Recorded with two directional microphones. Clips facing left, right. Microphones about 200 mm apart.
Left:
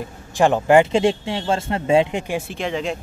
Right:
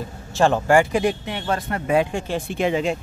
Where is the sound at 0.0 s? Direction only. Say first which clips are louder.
Left 1 dB; 15° left (ahead or behind).